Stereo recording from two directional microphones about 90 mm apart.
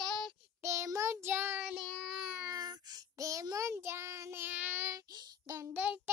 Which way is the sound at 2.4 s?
40° right (ahead or behind).